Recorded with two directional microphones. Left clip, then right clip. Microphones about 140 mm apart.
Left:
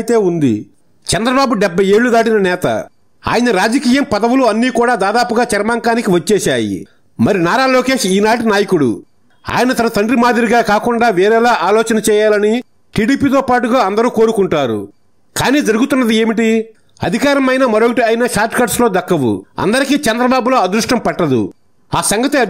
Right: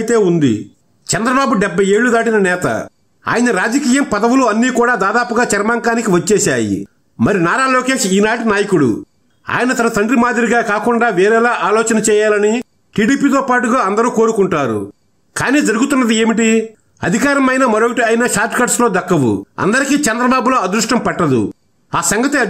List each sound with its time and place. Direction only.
0.0 s a man's voice: 35° left (ahead or behind)